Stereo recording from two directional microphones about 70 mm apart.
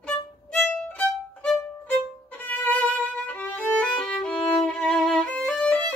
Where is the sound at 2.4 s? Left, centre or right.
Left.